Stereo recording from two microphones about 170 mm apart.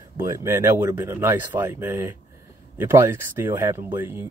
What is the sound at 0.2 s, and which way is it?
Speech, 15° right (ahead or behind).